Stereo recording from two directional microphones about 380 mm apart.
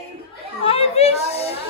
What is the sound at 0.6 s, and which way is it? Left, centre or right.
Children playing, centre.